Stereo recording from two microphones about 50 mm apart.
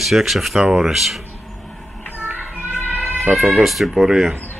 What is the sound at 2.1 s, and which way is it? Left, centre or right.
Music, right.